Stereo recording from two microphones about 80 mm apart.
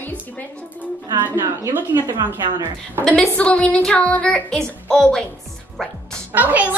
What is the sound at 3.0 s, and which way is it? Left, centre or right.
A woman's voice, centre.